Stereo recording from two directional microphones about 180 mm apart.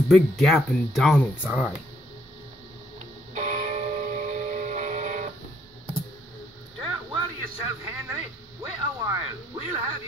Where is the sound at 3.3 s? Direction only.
40° right (ahead or behind).